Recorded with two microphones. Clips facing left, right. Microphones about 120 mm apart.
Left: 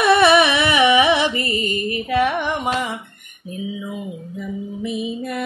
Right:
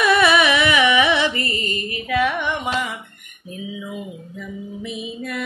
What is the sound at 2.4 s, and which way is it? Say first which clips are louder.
Carnatic music: left 2 dB; 35° left (ahead or behind).